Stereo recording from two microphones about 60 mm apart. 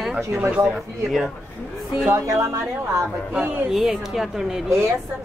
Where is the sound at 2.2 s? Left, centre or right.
Right.